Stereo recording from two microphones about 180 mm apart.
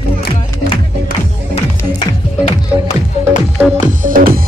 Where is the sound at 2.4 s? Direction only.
35° left (ahead or behind).